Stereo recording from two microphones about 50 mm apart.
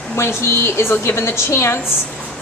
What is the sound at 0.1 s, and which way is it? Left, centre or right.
A woman's voice, left.